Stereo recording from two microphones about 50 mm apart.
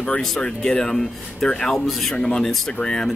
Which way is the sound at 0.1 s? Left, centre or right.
Centre.